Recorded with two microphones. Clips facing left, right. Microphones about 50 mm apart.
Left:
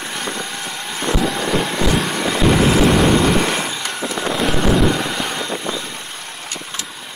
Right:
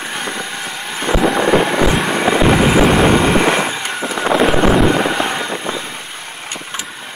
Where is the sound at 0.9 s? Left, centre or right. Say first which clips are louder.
Right 5 dB; right.